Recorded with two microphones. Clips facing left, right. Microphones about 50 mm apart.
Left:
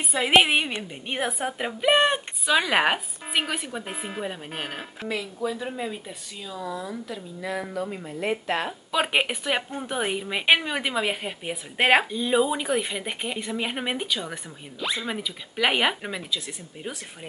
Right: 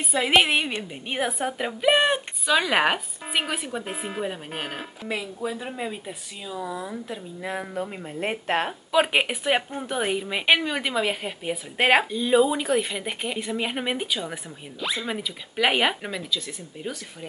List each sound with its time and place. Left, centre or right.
0.0 s a woman's voice: centre
5.0 s speech: centre
7.1 s speech: right
8.9 s a woman's voice: centre